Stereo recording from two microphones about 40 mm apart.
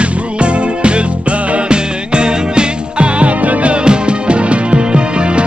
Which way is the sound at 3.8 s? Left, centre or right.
Right.